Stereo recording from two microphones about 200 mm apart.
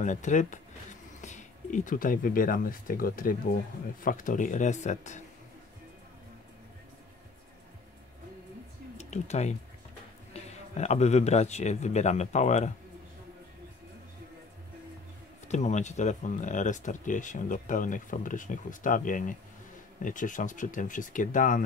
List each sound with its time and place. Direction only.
0.0 s speech: 40° left (ahead or behind)
8.9 s speech: 35° left (ahead or behind)
15.4 s speech: 35° left (ahead or behind)